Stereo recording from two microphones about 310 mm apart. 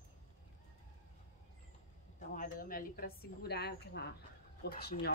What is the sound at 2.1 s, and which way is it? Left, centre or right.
A woman's voice, left.